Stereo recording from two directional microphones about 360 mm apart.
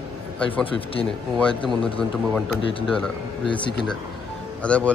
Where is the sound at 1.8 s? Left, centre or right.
Centre.